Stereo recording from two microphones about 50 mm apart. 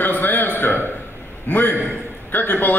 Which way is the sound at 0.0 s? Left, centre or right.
Left.